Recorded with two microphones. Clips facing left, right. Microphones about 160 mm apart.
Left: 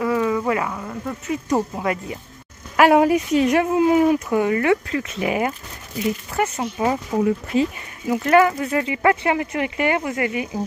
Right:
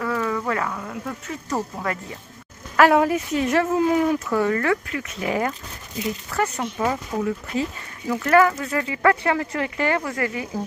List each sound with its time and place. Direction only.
0.0 s speech: 15° left (ahead or behind)
1.5 s speech: 15° left (ahead or behind)
4.8 s speech: 30° left (ahead or behind)
5.2 s speech: 15° left (ahead or behind)